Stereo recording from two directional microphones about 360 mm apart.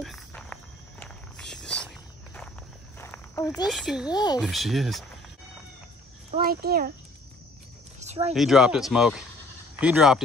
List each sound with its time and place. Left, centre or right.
0.0 s walk: centre
3.0 s speech: centre
4.1 s speech: centre
4.5 s speech: centre
6.3 s a child's voice: right
8.0 s a sound: centre
8.4 s speech: centre